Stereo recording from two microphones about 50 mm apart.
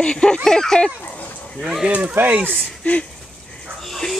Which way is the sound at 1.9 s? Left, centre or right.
Right.